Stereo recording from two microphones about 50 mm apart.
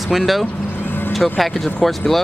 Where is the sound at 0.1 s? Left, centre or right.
Centre.